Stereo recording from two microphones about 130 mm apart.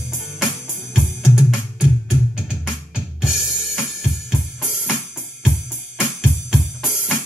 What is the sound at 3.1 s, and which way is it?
Drum kit, 5° right (ahead or behind).